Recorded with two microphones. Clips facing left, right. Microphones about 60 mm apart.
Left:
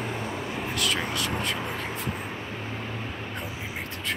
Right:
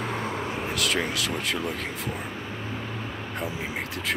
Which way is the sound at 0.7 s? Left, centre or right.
Right.